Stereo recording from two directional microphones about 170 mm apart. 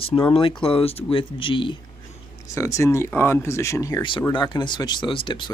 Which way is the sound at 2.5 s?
15° left (ahead or behind).